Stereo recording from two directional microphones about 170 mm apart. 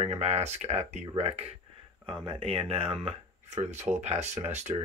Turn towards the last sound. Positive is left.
turn(degrees=-40)  # may be behind; listen again after turning